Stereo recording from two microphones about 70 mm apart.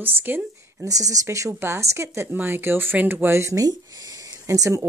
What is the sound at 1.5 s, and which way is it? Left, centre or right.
Speech, right.